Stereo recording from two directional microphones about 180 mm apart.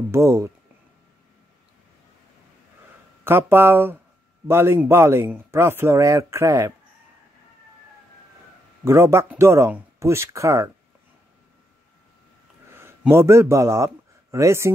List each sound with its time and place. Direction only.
0.1 s speech: 15° right (ahead or behind)
3.3 s speech: 10° right (ahead or behind)
8.8 s speech: 15° right (ahead or behind)
12.7 s a man's voice: 15° right (ahead or behind)